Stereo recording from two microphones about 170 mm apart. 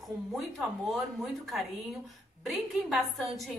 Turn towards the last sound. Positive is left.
turn(degrees=0)  # may be behind; listen again after turning